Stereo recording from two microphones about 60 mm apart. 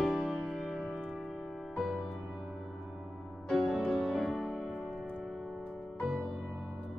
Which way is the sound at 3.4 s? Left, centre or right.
Centre.